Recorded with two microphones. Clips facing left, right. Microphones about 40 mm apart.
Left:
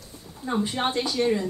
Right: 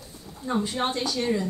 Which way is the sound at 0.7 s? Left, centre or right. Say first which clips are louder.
Left 1 dB; centre.